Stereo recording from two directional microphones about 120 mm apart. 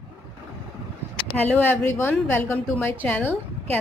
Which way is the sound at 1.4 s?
15° left (ahead or behind).